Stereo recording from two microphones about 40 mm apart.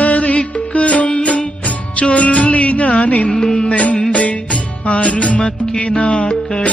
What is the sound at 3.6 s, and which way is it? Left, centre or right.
Music, left.